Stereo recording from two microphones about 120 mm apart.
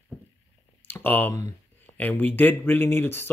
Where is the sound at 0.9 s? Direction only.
15° left (ahead or behind).